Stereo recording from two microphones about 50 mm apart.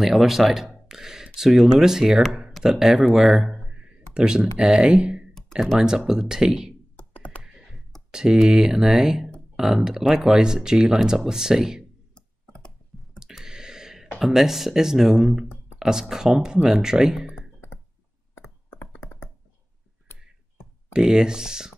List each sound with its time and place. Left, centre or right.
0.0 s speech: centre
3.2 s a sound: centre
4.4 s speech: centre
7.0 s computer keyboard: left
8.1 s speech: centre
12.1 s clicking: centre
12.9 s a sound: centre
13.3 s a sound: centre
14.2 s speech: centre
20.9 s speech: centre